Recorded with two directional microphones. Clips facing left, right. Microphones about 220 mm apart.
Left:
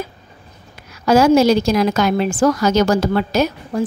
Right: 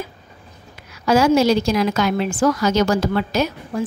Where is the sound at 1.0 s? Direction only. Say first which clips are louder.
Left 3 dB; 40° left (ahead or behind).